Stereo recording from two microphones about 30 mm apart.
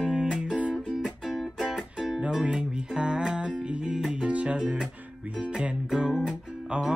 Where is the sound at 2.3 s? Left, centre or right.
Right.